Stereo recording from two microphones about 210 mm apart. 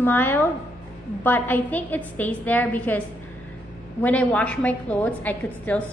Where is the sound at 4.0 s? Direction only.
5° left (ahead or behind).